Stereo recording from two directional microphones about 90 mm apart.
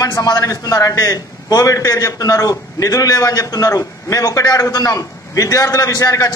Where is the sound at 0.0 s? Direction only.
45° left (ahead or behind).